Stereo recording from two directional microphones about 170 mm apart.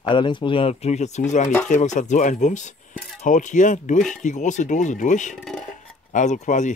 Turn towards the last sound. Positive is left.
turn(degrees=45)  # may be behind; listen again after turning